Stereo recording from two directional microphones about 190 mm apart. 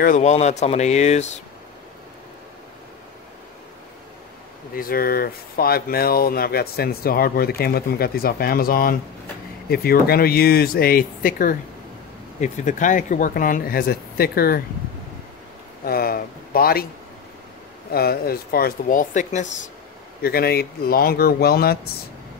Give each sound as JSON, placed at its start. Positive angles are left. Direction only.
{"t": 0.0, "sound": "speech", "side_deg": 40}
{"t": 4.7, "sound": "speech", "side_deg": 50}
{"t": 15.8, "sound": "a sound", "side_deg": 50}
{"t": 17.9, "sound": "speech", "side_deg": 55}
{"t": 20.2, "sound": "speech", "side_deg": 55}